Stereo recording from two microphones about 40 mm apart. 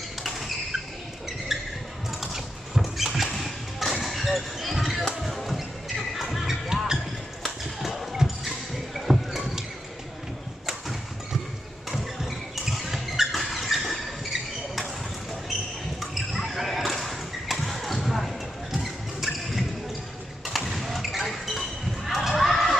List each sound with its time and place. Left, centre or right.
1.5 s basketball bounce: centre
2.0 s a sound: centre
4.0 s basketball bounce: centre
4.7 s basketball bounce: centre
5.2 s music: centre
7.8 s a sound: centre
11.9 s a sound: centre
13.4 s vehicle: centre
16.0 s basketball bounce: centre
20.7 s basketball bounce: centre